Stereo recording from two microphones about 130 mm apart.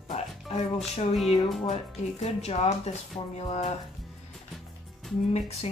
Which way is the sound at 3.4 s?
50° left (ahead or behind).